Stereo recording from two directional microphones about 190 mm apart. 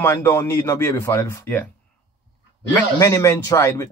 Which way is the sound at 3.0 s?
15° left (ahead or behind).